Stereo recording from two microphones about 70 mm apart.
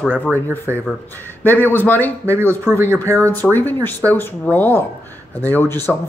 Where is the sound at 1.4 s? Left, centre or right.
Left.